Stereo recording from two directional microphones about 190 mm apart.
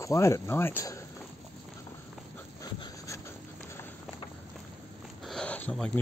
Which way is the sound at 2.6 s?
20° left (ahead or behind).